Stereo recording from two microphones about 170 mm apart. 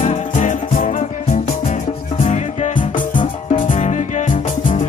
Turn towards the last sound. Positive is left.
turn(degrees=45)  # may be behind; listen again after turning